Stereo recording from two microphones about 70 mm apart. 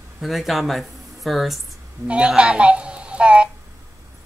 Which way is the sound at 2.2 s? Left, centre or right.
Centre.